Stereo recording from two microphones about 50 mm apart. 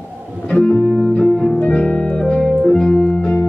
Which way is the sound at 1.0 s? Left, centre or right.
Centre.